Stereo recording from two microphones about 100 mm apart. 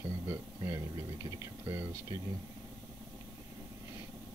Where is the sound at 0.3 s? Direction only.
30° right (ahead or behind).